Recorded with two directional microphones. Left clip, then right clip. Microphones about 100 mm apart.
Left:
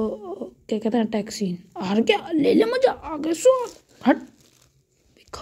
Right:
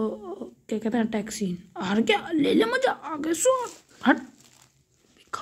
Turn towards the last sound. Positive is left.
turn(degrees=35)  # may be behind; listen again after turning